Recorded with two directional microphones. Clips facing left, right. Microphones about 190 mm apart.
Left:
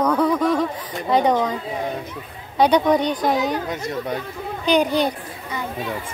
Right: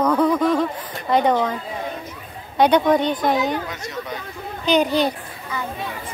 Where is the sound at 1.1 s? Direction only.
15° left (ahead or behind).